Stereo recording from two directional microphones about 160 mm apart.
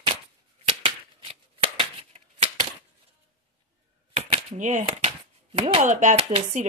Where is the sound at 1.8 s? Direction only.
30° right (ahead or behind).